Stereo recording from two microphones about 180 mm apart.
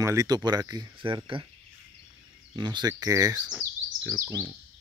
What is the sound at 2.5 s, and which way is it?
Speech, 25° right (ahead or behind).